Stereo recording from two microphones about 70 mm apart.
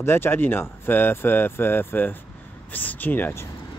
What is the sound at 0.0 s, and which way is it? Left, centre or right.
Speech, left.